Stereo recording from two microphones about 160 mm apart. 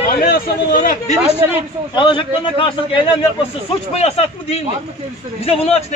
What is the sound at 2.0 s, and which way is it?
A man's voice, 30° left (ahead or behind).